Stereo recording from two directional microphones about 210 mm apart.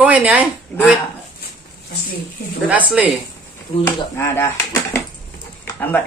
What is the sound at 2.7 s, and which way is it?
Speech, 5° right (ahead or behind).